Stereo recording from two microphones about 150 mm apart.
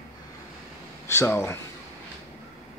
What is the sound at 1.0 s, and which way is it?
Speech, 15° left (ahead or behind).